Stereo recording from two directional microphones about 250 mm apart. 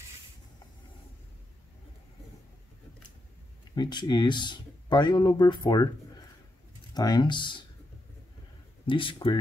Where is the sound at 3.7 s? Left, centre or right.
Centre.